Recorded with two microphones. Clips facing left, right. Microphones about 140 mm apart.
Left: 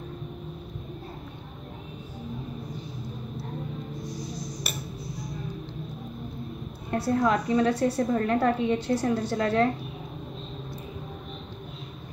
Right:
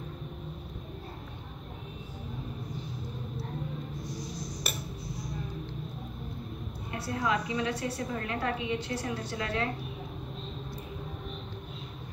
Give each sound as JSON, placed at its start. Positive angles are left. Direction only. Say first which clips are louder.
{"t": 6.9, "sound": "a woman's voice", "louder": "left 7 dB", "side_deg": 45}